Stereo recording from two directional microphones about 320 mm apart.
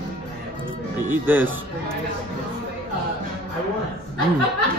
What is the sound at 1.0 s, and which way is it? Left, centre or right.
Speech, centre.